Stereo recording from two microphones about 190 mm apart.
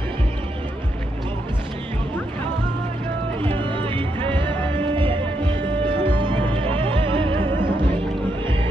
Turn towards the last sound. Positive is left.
turn(degrees=-25)  # may be behind; listen again after turning